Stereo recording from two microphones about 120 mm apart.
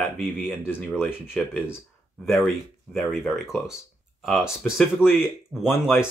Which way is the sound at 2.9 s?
Centre (ahead or behind).